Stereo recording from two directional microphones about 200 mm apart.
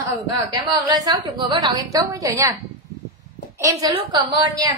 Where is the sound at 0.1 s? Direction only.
20° right (ahead or behind).